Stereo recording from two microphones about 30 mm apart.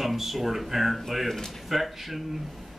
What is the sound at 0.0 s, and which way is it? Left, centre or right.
Speech, centre.